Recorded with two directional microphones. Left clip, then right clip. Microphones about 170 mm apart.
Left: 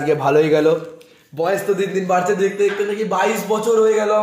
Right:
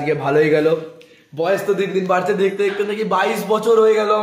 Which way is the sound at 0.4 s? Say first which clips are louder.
Right 3 dB; centre (ahead or behind).